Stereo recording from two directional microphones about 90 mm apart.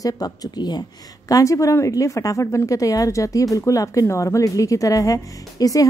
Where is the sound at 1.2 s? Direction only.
40° left (ahead or behind).